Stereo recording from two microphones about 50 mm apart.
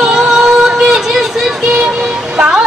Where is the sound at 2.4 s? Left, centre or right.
Centre.